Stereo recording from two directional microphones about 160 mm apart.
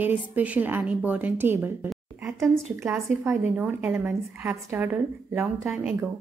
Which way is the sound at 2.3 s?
15° right (ahead or behind).